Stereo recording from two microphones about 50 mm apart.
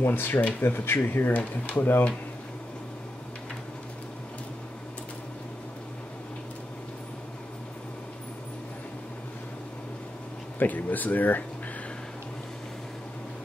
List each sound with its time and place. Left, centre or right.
0.0 s speech: left
0.9 s speech: left
10.6 s speech: left